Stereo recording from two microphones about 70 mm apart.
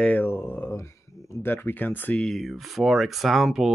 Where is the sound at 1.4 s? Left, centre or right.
Left.